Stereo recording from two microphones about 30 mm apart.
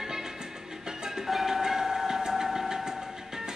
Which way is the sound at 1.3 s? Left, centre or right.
Centre.